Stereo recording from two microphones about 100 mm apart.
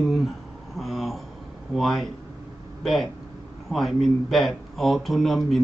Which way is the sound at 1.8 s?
Centre (ahead or behind).